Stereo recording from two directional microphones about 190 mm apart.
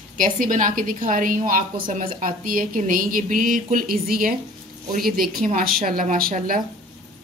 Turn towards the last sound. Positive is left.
turn(degrees=-45)  # may be behind; listen again after turning